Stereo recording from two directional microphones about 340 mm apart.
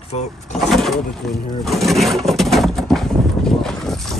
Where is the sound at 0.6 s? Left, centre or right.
Centre.